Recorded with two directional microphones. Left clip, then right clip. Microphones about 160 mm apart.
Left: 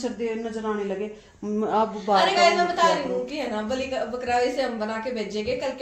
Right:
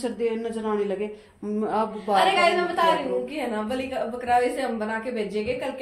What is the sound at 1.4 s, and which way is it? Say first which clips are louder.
Speech: left 2 dB; 35° left (ahead or behind).